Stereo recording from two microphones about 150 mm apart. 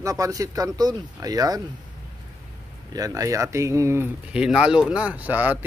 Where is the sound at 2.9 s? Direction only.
25° right (ahead or behind).